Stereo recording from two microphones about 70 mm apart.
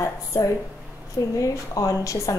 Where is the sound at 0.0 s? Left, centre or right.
Left.